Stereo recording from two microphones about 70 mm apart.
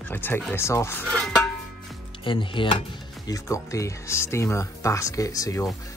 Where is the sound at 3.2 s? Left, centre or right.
Left.